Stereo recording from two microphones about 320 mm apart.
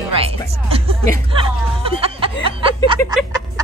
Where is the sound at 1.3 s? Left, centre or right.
Centre.